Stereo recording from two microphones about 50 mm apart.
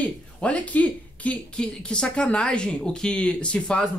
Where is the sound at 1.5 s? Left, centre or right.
Centre.